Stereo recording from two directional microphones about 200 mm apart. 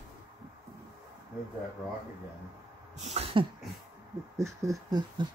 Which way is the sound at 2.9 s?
30° right (ahead or behind).